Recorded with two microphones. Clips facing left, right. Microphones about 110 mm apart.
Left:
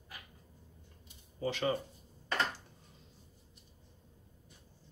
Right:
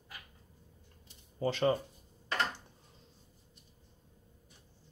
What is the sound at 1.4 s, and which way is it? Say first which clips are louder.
Speech: right 4 dB; 30° right (ahead or behind).